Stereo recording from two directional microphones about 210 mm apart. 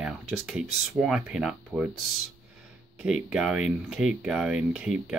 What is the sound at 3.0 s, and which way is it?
Speech, 5° right (ahead or behind).